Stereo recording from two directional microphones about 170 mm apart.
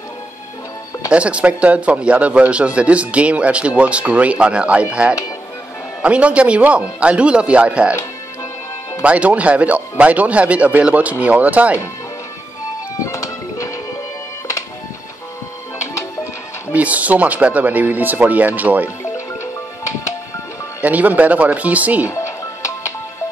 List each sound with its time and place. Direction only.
1.1 s speech: 5° right (ahead or behind)
9.0 s speech: 10° right (ahead or behind)
13.0 s music: 20° left (ahead or behind)
16.7 s speech: 10° right (ahead or behind)
20.8 s speech: 10° right (ahead or behind)
22.0 s music: 15° left (ahead or behind)